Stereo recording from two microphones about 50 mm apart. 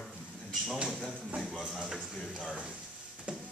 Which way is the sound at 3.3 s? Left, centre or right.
Centre.